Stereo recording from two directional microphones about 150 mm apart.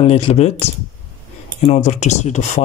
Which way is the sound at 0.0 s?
45° left (ahead or behind).